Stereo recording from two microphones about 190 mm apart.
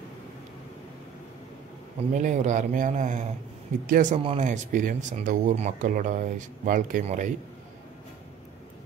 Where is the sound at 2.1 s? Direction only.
40° right (ahead or behind).